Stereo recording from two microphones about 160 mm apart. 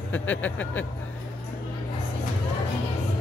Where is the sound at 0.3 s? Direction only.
10° left (ahead or behind).